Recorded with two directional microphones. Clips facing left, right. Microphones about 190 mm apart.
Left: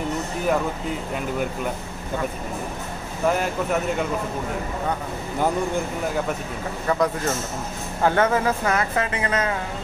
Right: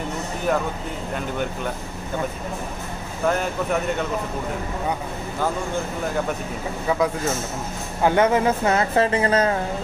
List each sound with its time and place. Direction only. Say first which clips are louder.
3.3 s speech: even; 5° left (ahead or behind)
6.9 s speech: even; 5° right (ahead or behind)
8.0 s speech: right 2 dB; 15° right (ahead or behind); by 9.6 s 35° right (ahead or behind)